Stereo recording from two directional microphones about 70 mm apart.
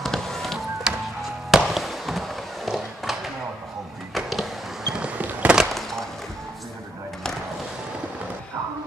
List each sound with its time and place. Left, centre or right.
0.0 s music: centre
0.8 s fireworks: centre
4.1 s a sound: centre; by 5.6 s right
5.6 s skateboard: centre